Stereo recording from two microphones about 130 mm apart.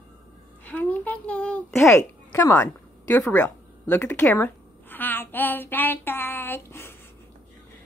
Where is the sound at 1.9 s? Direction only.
25° left (ahead or behind).